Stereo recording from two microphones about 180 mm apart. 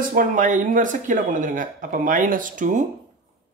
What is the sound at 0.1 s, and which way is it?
Speech, 50° right (ahead or behind).